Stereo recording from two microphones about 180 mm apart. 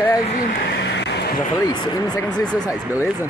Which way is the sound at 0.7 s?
70° left (ahead or behind).